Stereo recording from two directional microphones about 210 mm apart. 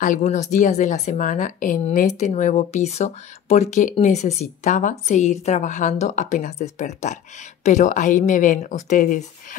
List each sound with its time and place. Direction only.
0.0 s speech: 35° left (ahead or behind)